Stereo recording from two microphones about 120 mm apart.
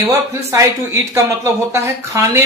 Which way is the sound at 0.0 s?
25° right (ahead or behind).